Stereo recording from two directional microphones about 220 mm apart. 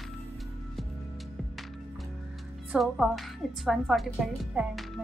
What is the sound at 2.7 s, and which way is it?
Speech, centre (ahead or behind).